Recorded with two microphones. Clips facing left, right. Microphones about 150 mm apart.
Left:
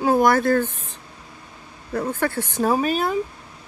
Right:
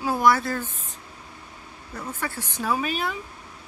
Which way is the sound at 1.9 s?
60° left (ahead or behind).